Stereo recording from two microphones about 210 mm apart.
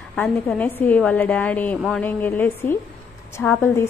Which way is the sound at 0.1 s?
5° left (ahead or behind).